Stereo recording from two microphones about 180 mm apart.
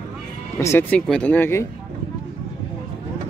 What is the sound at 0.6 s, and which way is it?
Speech, 15° left (ahead or behind).